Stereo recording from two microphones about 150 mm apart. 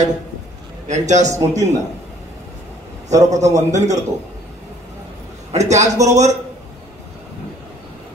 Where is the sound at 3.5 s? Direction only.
55° right (ahead or behind).